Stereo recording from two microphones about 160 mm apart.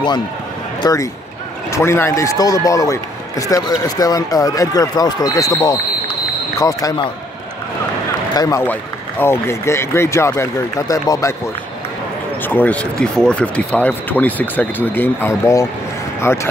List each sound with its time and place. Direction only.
0.8 s speech: 20° left (ahead or behind)
8.4 s speech: 25° left (ahead or behind)
12.4 s speech: 10° left (ahead or behind)